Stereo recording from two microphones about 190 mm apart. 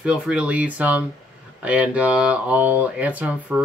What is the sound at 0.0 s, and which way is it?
Speech, 5° right (ahead or behind).